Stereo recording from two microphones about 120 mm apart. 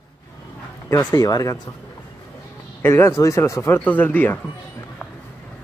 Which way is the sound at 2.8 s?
20° left (ahead or behind).